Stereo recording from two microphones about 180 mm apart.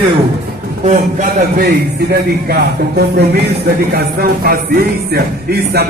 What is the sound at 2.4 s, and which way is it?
Music, 60° right (ahead or behind).